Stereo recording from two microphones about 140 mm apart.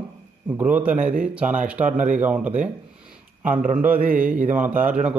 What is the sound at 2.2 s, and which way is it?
Speech, 10° right (ahead or behind).